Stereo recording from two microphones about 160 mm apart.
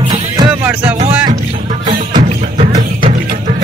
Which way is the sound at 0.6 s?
10° right (ahead or behind).